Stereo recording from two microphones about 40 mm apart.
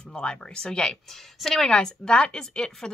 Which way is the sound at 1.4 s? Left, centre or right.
Centre.